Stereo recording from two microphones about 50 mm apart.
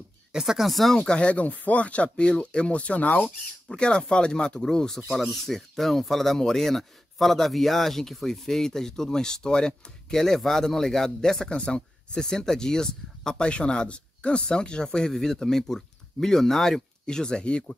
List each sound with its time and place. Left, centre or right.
0.3 s speech: centre
0.9 s speech: centre
3.6 s speech: centre
5.0 s speech: centre; by 17.7 s left